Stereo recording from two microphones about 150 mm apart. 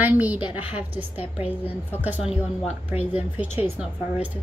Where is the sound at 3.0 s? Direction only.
40° left (ahead or behind).